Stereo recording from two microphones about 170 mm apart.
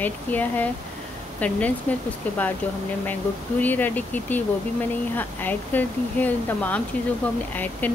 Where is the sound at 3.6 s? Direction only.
10° left (ahead or behind).